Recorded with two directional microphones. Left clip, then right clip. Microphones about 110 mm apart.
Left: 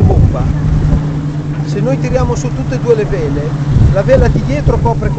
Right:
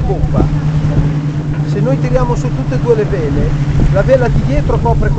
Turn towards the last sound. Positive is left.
turn(degrees=45)  # may be behind; listen again after turning